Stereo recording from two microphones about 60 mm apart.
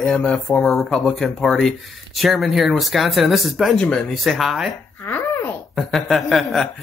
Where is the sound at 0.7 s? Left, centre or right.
Centre.